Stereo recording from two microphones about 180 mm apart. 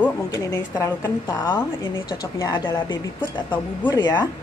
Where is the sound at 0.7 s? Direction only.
20° left (ahead or behind).